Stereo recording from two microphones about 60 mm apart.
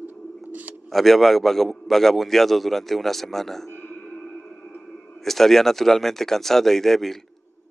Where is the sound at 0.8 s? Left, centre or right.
Centre.